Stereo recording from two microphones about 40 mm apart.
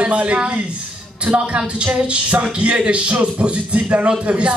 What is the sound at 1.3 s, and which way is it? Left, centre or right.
Speech, right.